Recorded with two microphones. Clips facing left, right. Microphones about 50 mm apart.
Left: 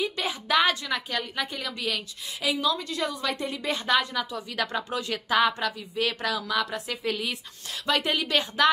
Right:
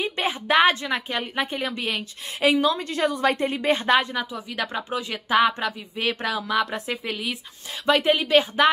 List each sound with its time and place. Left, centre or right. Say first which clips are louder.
0.0 s a woman's voice: right 3 dB; right
7.1 s speech: left 3 dB; centre
7.8 s a woman's voice: right 6 dB; right